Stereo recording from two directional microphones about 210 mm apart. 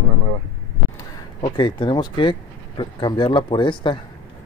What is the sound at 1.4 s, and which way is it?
Speech, 20° left (ahead or behind).